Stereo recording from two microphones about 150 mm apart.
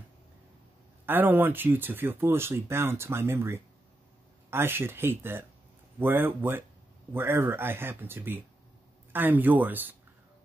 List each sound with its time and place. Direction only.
1.0 s speech: 15° right (ahead or behind)